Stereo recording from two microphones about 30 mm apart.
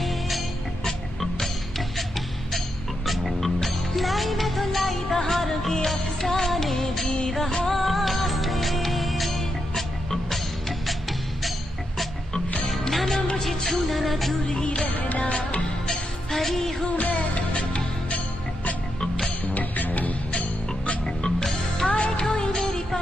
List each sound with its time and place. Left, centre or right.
0.0 s music: centre
7.7 s music: centre
10.9 s music: centre
12.9 s music: centre
15.0 s music: left
15.9 s music: centre
16.9 s music: left
19.5 s music: left
21.0 s music: left
21.8 s music: left